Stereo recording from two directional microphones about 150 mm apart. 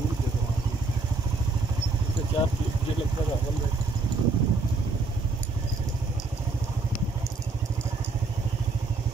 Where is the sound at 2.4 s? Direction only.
35° left (ahead or behind).